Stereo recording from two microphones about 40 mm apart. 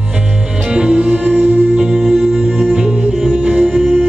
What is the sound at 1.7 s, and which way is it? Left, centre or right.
Music, centre.